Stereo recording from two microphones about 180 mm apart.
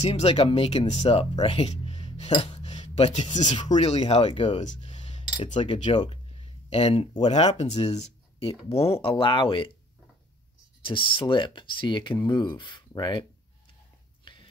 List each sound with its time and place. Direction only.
0.0 s speech: 35° left (ahead or behind)
2.5 s a sound: 35° left (ahead or behind)
3.6 s speech: 40° left (ahead or behind)
10.8 s speech: 30° left (ahead or behind)